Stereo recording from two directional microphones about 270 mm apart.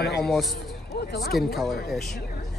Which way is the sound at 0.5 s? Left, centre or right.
Left.